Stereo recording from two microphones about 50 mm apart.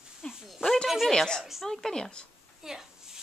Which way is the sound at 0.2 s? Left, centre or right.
Centre.